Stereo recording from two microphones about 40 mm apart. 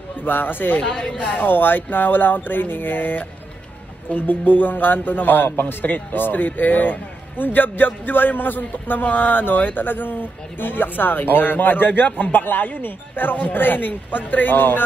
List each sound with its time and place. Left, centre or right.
0.2 s a man's voice: left
1.1 s a man's voice: left